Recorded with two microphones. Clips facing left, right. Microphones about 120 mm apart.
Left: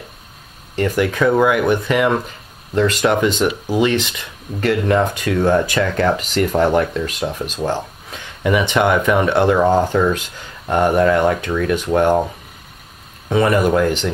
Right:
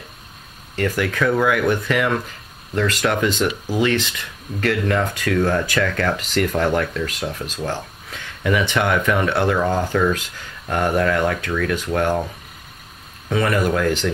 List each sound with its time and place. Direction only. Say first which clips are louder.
0.7 s speech: left 4 dB; 20° left (ahead or behind)
13.3 s speech: left 4 dB; 25° left (ahead or behind)